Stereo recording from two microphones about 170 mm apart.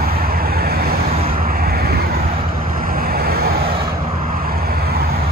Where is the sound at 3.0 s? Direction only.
60° right (ahead or behind).